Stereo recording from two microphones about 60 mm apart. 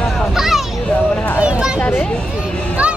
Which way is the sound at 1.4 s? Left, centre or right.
Centre.